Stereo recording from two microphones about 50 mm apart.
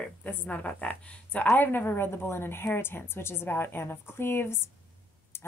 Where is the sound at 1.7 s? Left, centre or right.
Left.